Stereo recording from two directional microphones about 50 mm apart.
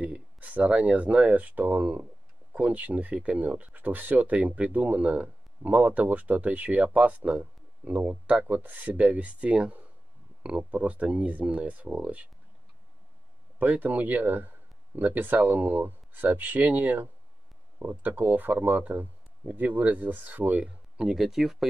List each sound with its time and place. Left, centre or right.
0.0 s speech: right
13.6 s speech: right
21.1 s speech: centre